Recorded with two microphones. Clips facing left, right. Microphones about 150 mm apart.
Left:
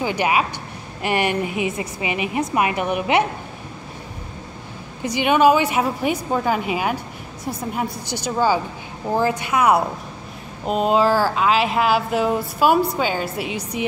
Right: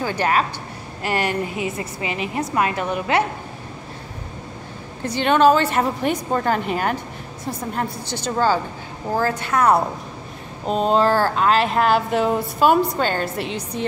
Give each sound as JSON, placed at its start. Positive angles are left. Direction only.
{"t": 0.0, "sound": "a woman's voice", "side_deg": 15}
{"t": 5.0, "sound": "a woman's voice", "side_deg": 10}